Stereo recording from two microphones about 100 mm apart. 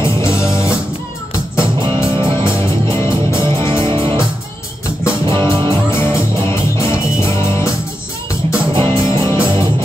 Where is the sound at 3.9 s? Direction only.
55° right (ahead or behind).